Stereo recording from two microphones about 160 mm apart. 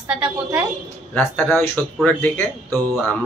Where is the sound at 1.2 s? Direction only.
10° left (ahead or behind).